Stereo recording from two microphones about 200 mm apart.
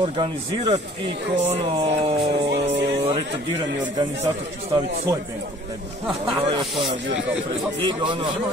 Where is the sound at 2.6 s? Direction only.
25° right (ahead or behind).